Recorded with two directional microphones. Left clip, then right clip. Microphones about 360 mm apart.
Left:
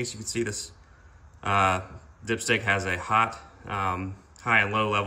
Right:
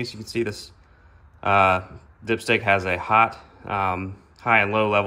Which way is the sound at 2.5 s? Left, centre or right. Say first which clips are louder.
Right 5 dB; centre.